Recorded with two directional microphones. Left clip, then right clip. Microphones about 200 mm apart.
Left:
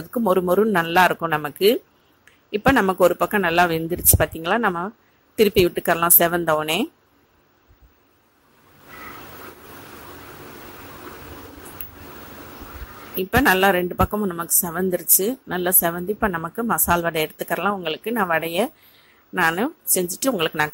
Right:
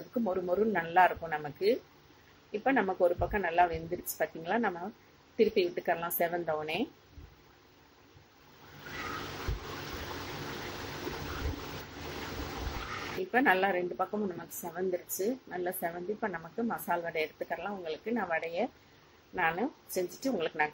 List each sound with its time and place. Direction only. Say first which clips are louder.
0.2 s a woman's voice: left 12 dB; 50° left (ahead or behind)
13.3 s a woman's voice: left 11 dB; 45° left (ahead or behind)